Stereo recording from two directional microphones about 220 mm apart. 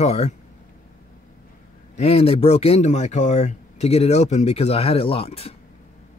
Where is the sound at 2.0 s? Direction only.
30° left (ahead or behind).